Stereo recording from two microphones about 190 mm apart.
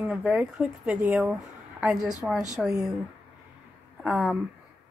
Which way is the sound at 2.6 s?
20° right (ahead or behind).